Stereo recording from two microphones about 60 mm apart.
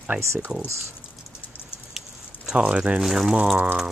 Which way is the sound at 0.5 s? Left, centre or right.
Centre.